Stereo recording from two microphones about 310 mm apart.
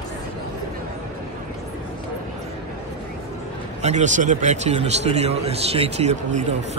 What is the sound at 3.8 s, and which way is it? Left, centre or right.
A man's voice, right.